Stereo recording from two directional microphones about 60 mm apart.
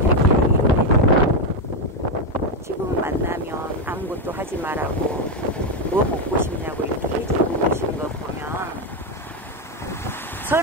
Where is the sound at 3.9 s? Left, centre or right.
Right.